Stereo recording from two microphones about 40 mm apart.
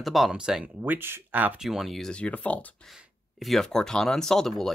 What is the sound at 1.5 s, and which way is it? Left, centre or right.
Speech, centre.